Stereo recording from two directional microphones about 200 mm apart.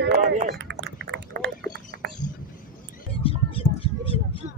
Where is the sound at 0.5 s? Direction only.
60° right (ahead or behind).